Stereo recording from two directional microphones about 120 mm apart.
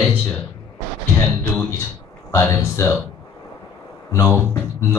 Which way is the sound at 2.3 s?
25° left (ahead or behind).